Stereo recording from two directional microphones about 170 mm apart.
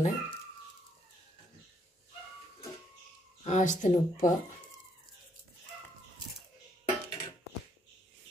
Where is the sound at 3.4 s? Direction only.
45° left (ahead or behind).